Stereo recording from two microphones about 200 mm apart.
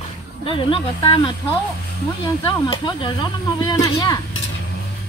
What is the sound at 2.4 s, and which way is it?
Speech, 20° left (ahead or behind).